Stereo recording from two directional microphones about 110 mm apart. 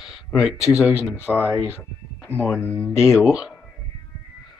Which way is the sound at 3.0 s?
5° right (ahead or behind).